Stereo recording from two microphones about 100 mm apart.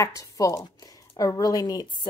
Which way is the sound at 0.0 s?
35° left (ahead or behind).